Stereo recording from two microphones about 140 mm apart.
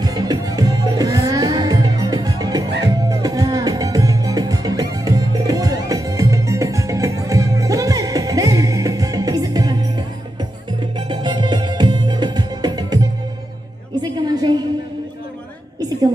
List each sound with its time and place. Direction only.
0.0 s music: 30° right (ahead or behind)
14.0 s music: 30° right (ahead or behind)